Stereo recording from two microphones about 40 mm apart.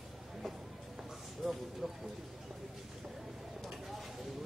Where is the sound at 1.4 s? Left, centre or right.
Centre.